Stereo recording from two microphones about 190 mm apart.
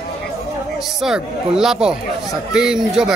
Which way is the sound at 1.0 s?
5° right (ahead or behind).